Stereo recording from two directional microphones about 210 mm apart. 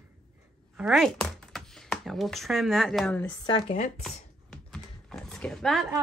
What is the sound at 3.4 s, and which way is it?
Speech, 30° left (ahead or behind).